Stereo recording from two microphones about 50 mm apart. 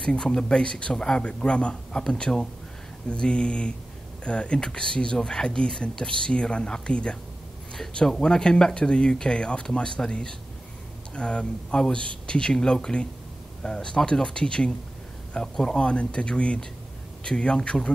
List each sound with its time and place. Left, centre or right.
0.0 s speech: centre